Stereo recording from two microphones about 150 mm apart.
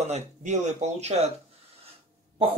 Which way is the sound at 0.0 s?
50° right (ahead or behind).